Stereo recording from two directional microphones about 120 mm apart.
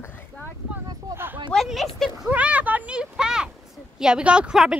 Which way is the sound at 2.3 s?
10° right (ahead or behind).